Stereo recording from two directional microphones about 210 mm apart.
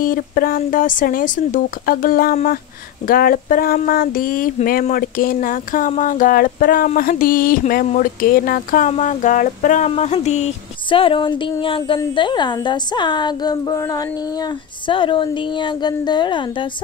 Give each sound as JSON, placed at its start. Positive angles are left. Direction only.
{"t": 0.0, "sound": "speech", "side_deg": 40}